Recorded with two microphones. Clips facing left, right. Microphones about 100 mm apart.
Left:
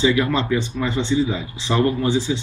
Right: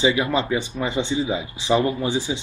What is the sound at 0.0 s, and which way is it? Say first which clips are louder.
Speech: left 2 dB; 20° right (ahead or behind).